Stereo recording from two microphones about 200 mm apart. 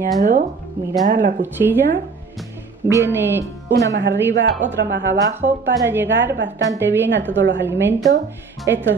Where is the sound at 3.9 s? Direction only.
65° right (ahead or behind).